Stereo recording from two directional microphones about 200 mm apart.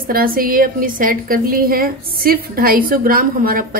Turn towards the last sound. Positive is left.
turn(degrees=-45)  # may be behind; listen again after turning